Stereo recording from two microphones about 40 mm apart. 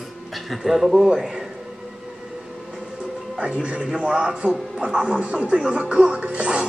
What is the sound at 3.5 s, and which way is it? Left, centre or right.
A man's voice, right.